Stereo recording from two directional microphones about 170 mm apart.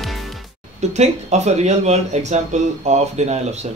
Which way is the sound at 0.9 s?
40° right (ahead or behind).